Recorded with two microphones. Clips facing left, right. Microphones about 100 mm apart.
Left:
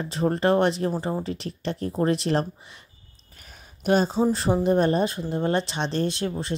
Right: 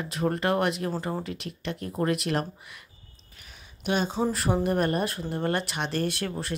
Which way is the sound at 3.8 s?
40° left (ahead or behind).